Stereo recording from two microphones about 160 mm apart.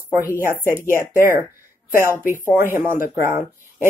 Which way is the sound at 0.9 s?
15° right (ahead or behind).